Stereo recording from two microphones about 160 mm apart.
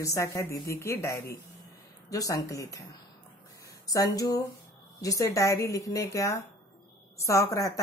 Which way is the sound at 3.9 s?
20° left (ahead or behind).